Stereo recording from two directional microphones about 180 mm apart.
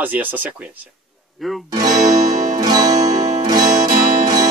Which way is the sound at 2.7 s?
20° right (ahead or behind).